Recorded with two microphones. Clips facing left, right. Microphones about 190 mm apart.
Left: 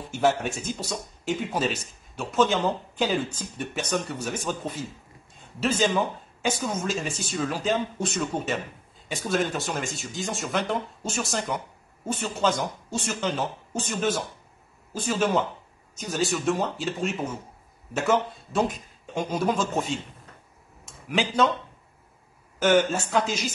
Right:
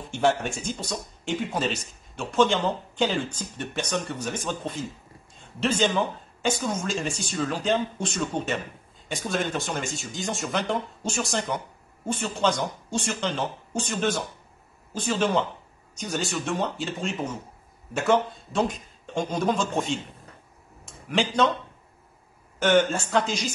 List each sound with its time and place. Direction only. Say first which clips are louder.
0.1 s speech: even; 5° left (ahead or behind)
21.1 s speech: even; 5° left (ahead or behind)
22.6 s speech: even; 5° left (ahead or behind)